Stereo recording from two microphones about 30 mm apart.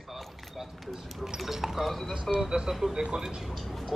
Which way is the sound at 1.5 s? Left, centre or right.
Centre.